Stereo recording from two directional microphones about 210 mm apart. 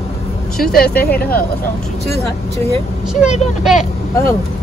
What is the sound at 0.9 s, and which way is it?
Speech, 10° left (ahead or behind).